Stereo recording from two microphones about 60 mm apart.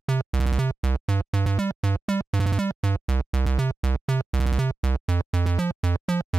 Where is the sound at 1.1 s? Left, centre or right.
Left.